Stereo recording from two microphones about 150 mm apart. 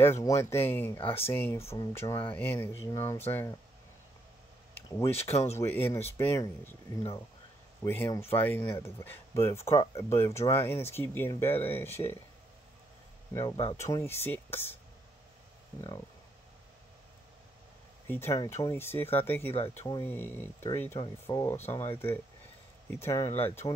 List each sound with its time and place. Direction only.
0.0 s speech: 20° left (ahead or behind)
4.9 s speech: 20° left (ahead or behind)
5.3 s speech: 45° left (ahead or behind)
5.6 s speech: 15° left (ahead or behind)
7.8 s speech: 20° left (ahead or behind)
13.3 s speech: 20° left (ahead or behind)
18.0 s speech: 15° left (ahead or behind)